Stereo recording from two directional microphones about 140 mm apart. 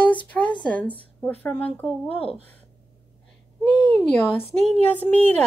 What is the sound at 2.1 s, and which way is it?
Speech, 40° left (ahead or behind).